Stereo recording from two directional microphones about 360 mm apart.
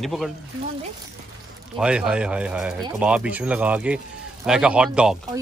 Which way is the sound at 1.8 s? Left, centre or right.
Centre.